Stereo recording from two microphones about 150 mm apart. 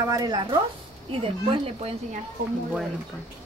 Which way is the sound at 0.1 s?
25° right (ahead or behind).